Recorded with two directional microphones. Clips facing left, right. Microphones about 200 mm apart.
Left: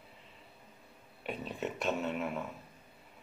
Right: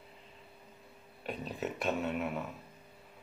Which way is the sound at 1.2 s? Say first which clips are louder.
Even; centre (ahead or behind).